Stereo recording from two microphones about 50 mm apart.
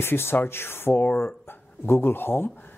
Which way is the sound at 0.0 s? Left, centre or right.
Left.